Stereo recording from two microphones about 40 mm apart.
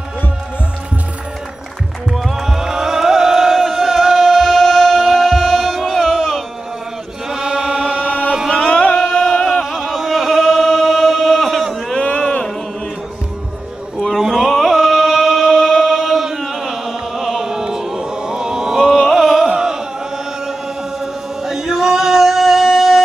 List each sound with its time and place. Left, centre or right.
2.0 s a sound: centre
5.8 s music: centre
7.2 s chant: centre
8.5 s music: centre
9.7 s chant: centre
12.2 s a sound: centre
14.2 s music: centre
19.5 s chant: centre
21.0 s a sound: centre